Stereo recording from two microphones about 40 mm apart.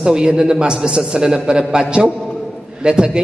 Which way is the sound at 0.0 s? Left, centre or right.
Centre.